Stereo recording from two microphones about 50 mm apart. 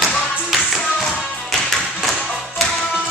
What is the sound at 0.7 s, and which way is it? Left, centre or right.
Tap, centre.